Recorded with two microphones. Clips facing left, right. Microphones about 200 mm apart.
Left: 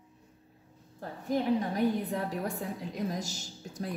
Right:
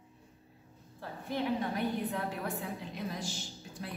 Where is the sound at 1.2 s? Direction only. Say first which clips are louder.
Left 5 dB; 40° left (ahead or behind).